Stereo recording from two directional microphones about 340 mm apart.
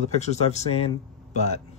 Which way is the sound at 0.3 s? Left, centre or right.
Centre.